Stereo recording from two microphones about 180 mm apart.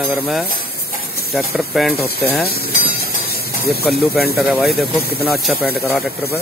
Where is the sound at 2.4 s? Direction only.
60° left (ahead or behind).